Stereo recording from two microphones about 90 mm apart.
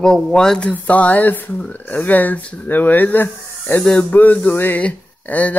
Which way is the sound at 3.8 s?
5° left (ahead or behind).